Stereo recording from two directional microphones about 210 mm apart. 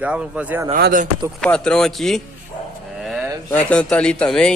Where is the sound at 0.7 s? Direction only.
40° right (ahead or behind).